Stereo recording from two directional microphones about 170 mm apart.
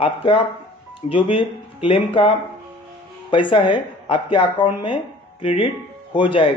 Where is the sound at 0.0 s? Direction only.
30° left (ahead or behind).